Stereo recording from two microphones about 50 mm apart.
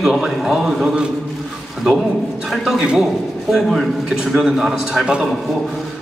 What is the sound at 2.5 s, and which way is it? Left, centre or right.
Speech, centre.